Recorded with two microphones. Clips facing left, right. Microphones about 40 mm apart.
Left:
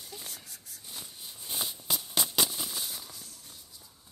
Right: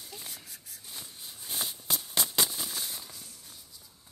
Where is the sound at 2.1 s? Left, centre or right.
Left.